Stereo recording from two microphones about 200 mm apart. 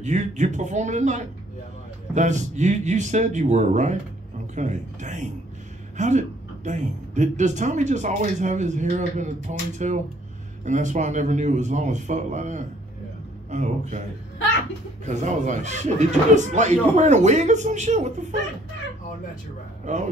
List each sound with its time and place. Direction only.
0.0 s a woman's voice: 35° right (ahead or behind)
15.0 s a woman's voice: 35° right (ahead or behind)
19.8 s speech: 35° right (ahead or behind)